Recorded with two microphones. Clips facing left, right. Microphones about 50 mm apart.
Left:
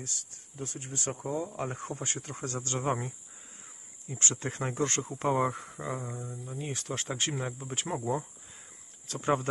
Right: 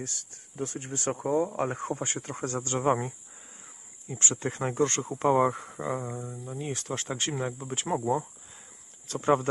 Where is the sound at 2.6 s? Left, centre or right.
Centre.